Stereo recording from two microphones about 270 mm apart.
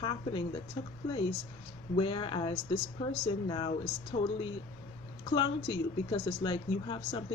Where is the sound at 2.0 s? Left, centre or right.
Centre.